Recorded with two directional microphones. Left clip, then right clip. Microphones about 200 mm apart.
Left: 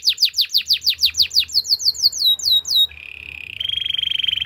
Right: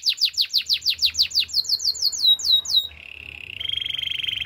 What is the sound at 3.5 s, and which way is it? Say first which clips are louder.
Frog: left 5 dB; 15° left (ahead or behind).